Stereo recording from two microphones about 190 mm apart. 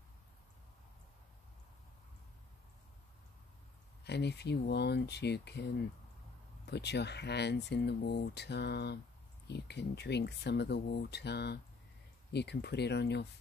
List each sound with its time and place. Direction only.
4.0 s speech: 60° left (ahead or behind)